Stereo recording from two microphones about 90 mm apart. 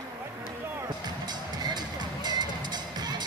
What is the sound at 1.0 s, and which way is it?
Music, 50° right (ahead or behind).